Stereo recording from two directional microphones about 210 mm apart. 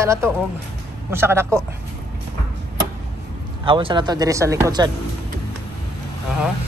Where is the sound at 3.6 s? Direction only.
25° right (ahead or behind).